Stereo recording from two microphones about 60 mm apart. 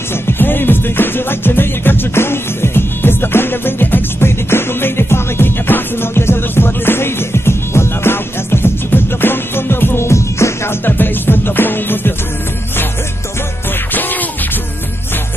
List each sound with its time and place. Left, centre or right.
0.3 s music: left
10.9 s music: left